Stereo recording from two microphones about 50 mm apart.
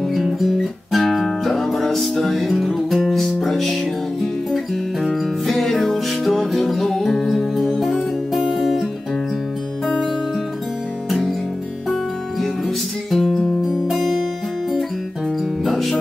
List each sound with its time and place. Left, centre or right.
0.1 s music: centre
5.0 s music: centre
11.1 s music: centre
15.6 s music: centre